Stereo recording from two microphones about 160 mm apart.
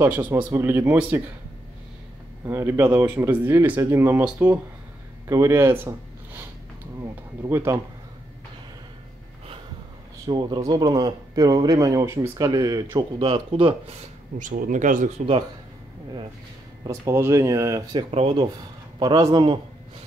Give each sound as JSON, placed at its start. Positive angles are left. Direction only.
{"t": 0.0, "sound": "speech", "side_deg": -10}
{"t": 2.4, "sound": "speech", "side_deg": -15}
{"t": 5.3, "sound": "speech", "side_deg": -15}
{"t": 7.0, "sound": "a sound", "side_deg": -15}
{"t": 10.2, "sound": "speech", "side_deg": -25}
{"t": 12.9, "sound": "speech", "side_deg": -35}
{"t": 14.4, "sound": "speech", "side_deg": -55}
{"t": 16.8, "sound": "speech", "side_deg": -15}
{"t": 18.1, "sound": "speech", "side_deg": -35}